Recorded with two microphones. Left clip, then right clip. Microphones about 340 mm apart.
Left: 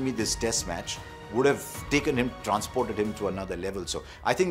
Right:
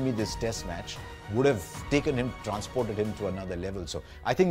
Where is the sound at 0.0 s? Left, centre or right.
Right.